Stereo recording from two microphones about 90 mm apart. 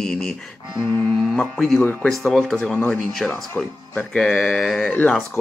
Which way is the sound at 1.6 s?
Centre (ahead or behind).